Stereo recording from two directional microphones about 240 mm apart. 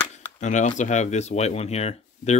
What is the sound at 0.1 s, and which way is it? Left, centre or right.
Speech, left.